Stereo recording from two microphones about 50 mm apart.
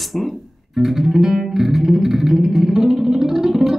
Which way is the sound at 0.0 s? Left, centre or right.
Centre.